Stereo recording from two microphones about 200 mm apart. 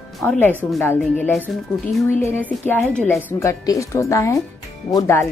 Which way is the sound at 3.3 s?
15° left (ahead or behind).